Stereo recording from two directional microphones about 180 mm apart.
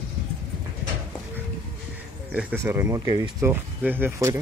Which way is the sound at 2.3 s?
5° right (ahead or behind).